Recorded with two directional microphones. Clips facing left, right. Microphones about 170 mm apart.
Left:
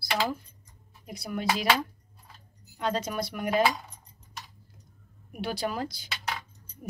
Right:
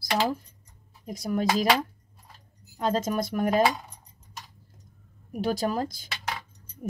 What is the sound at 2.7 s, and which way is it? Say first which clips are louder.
Speech: right 4 dB; 45° right (ahead or behind).